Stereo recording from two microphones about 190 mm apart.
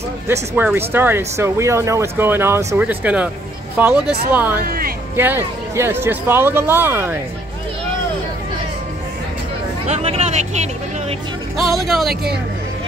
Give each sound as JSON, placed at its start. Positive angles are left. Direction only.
{"t": 0.3, "sound": "speech", "side_deg": -10}
{"t": 4.6, "sound": "speech", "side_deg": -50}
{"t": 5.1, "sound": "speech", "side_deg": -10}
{"t": 9.8, "sound": "speech", "side_deg": -35}
{"t": 11.5, "sound": "speech", "side_deg": 0}